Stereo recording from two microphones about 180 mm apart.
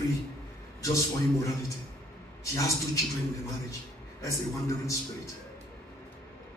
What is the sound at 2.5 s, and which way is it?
Speech, 20° left (ahead or behind).